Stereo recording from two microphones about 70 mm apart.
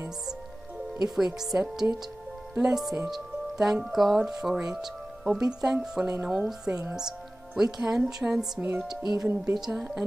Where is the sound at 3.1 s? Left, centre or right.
Centre.